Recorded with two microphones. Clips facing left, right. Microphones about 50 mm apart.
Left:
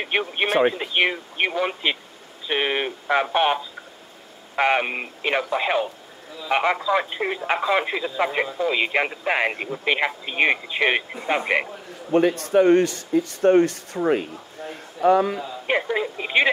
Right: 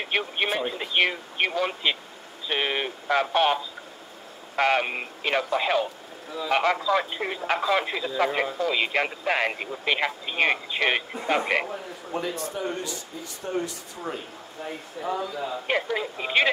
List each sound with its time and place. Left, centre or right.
0.0 s speech: centre
0.5 s speech: left
0.7 s speech: centre
12.1 s speech: left
15.6 s speech: centre